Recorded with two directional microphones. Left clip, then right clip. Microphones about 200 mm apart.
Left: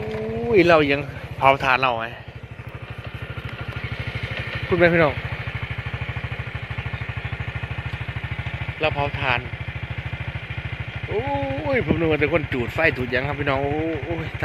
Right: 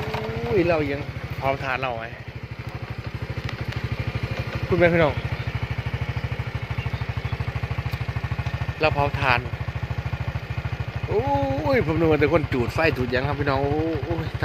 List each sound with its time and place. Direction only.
0.6 s speech: 55° left (ahead or behind)
1.4 s speech: 35° left (ahead or behind)
4.7 s speech: 25° left (ahead or behind)
8.8 s speech: 10° left (ahead or behind)
11.1 s speech: 5° left (ahead or behind)